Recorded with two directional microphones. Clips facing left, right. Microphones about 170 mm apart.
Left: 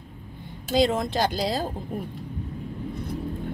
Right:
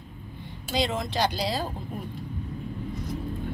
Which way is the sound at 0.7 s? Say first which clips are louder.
Left 5 dB; 45° left (ahead or behind).